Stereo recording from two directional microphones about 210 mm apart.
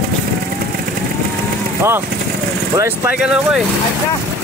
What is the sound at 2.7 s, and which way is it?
Speech, 10° right (ahead or behind).